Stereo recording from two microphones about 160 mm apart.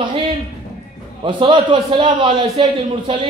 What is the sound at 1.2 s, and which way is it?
A man's voice, 30° right (ahead or behind).